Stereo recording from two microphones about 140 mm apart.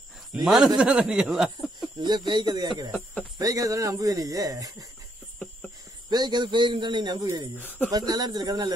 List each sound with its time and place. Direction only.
0.3 s a man's voice: 10° right (ahead or behind)
0.7 s a sound: 5° right (ahead or behind)
2.0 s speech: 35° right (ahead or behind)
6.0 s speech: 30° right (ahead or behind)
7.5 s speech: 10° left (ahead or behind)
8.1 s speech: 30° right (ahead or behind)